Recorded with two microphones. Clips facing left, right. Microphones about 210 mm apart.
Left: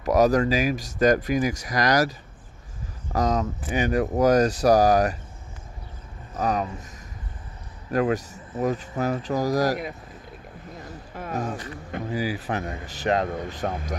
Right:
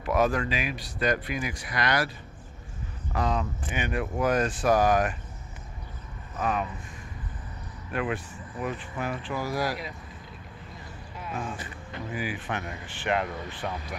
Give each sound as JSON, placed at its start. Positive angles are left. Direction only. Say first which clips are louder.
{"t": 0.0, "sound": "speech", "louder": "left 6 dB", "side_deg": 40}
{"t": 6.3, "sound": "speech", "louder": "left 4 dB", "side_deg": 40}
{"t": 7.9, "sound": "speech", "louder": "left 7 dB", "side_deg": 40}
{"t": 10.8, "sound": "boat", "louder": "left 6 dB", "side_deg": 45}
{"t": 11.6, "sound": "speech", "louder": "left 5 dB", "side_deg": 40}